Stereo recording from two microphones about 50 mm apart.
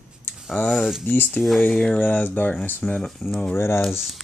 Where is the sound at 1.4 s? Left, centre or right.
Left.